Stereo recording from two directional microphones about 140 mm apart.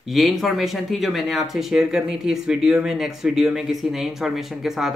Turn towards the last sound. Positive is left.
turn(degrees=0)  # may be behind; listen again after turning